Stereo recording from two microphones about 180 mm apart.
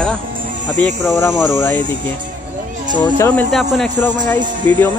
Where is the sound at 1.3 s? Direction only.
5° right (ahead or behind).